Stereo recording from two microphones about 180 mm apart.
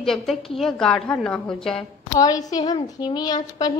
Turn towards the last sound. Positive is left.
turn(degrees=20)  # may be behind; listen again after turning